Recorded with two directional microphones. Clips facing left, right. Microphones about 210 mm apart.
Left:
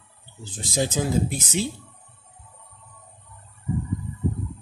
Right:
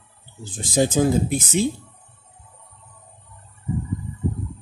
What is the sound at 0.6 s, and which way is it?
Speech, 50° right (ahead or behind).